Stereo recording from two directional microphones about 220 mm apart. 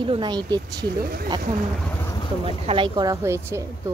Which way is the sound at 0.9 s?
45° right (ahead or behind).